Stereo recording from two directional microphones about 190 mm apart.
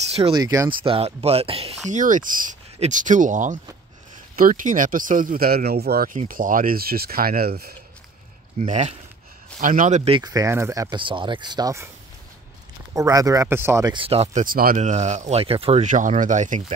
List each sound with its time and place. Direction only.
0.3 s speech: 20° right (ahead or behind)
0.8 s speech: 30° right (ahead or behind)
1.9 s speech: 40° right (ahead or behind)
8.5 s speech: 35° right (ahead or behind)
10.1 s speech: 20° right (ahead or behind)
12.9 s speech: 15° right (ahead or behind)
13.9 s speech: 30° right (ahead or behind)